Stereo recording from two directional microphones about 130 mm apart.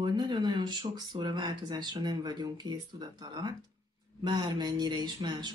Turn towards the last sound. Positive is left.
turn(degrees=-35)  # may be behind; listen again after turning